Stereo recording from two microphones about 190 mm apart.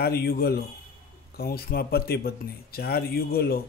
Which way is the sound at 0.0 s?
55° left (ahead or behind).